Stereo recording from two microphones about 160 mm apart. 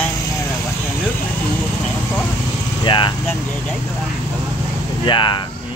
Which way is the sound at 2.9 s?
30° left (ahead or behind).